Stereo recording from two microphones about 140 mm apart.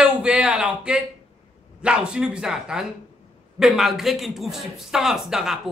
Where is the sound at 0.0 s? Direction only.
10° right (ahead or behind).